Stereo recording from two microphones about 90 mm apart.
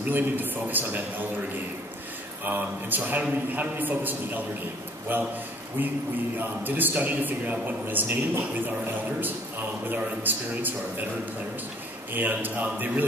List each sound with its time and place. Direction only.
0.1 s a man's voice: 20° right (ahead or behind)
2.4 s a man's voice: 20° right (ahead or behind)
9.8 s a man's voice: 20° right (ahead or behind)
12.1 s a man's voice: 20° right (ahead or behind)